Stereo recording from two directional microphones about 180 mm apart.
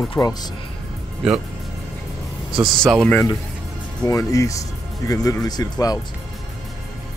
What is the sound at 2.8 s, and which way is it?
Speech, 5° left (ahead or behind).